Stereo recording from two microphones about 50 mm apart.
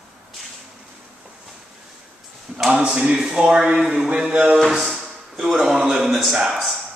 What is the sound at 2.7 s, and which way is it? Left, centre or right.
A man's voice, centre.